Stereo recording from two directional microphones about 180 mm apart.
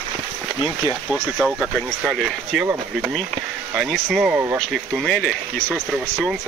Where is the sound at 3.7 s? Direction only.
Centre (ahead or behind).